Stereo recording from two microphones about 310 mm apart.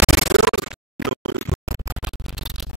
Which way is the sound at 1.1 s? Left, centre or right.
Right.